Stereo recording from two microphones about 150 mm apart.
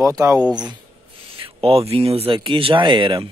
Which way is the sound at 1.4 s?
40° right (ahead or behind).